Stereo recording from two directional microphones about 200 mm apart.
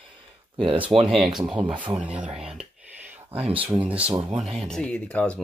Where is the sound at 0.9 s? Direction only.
25° right (ahead or behind).